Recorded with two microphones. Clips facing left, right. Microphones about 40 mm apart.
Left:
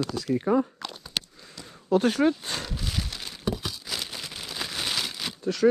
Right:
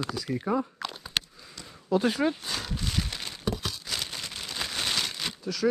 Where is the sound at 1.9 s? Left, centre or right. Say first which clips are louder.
Left 3 dB; left.